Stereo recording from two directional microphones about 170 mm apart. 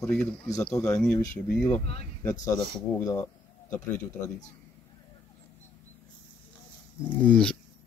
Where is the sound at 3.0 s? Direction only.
20° left (ahead or behind).